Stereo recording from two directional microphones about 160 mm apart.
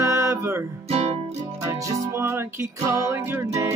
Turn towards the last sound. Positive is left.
turn(degrees=-15)  # may be behind; listen again after turning